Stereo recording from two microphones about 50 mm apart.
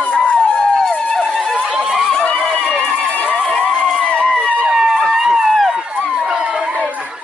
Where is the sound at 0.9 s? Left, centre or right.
Centre.